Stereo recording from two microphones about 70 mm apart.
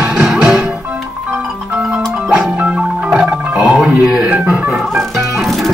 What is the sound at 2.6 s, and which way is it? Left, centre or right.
Music, centre.